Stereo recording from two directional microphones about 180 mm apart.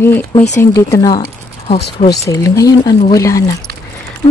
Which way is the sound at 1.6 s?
35° left (ahead or behind).